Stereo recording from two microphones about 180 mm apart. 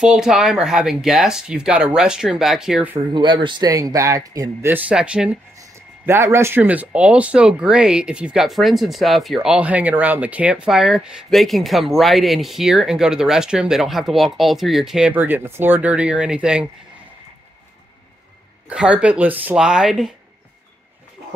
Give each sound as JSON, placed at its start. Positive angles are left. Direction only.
{"t": 0.0, "sound": "speech", "side_deg": -5}
{"t": 3.1, "sound": "speech", "side_deg": -25}
{"t": 18.7, "sound": "speech", "side_deg": -5}